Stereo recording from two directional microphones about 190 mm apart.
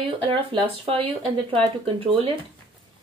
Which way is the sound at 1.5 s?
30° right (ahead or behind).